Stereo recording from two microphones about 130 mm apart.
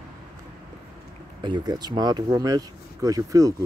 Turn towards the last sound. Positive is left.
turn(degrees=-25)  # may be behind; listen again after turning